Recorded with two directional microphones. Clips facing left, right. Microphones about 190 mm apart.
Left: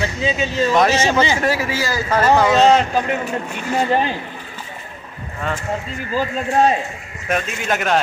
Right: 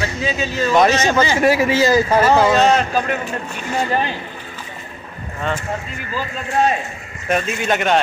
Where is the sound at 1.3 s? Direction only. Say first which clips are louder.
Right 5 dB; 15° right (ahead or behind).